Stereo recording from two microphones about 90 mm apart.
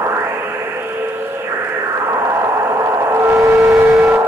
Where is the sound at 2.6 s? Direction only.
30° right (ahead or behind).